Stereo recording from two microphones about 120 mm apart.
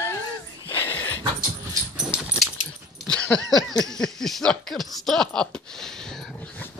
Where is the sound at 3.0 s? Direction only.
10° left (ahead or behind).